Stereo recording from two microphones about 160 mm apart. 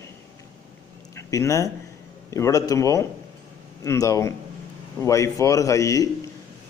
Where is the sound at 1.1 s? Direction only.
20° left (ahead or behind).